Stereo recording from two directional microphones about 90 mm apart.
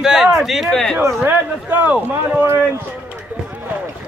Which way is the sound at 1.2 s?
20° right (ahead or behind).